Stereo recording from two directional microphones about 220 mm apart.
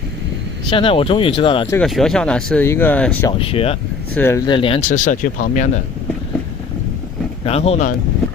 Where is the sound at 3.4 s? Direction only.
25° left (ahead or behind).